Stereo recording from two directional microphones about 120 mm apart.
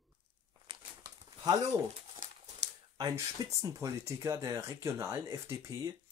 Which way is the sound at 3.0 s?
30° right (ahead or behind).